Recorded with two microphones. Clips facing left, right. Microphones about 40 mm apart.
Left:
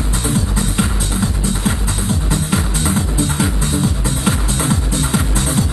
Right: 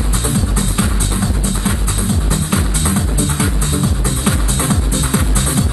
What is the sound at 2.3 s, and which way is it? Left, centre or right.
Music, right.